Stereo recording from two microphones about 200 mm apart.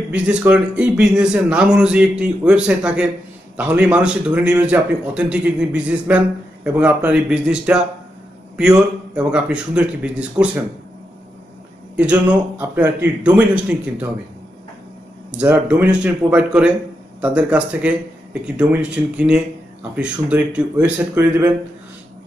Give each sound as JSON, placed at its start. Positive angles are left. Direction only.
{"t": 0.1, "sound": "a man's voice", "side_deg": -5}
{"t": 12.0, "sound": "speech", "side_deg": -5}
{"t": 15.3, "sound": "speech", "side_deg": -5}